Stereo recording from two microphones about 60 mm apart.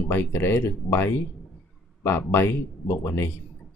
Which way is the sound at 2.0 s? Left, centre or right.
Left.